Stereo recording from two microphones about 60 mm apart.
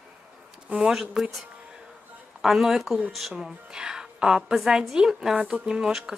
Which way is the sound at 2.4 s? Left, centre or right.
Centre.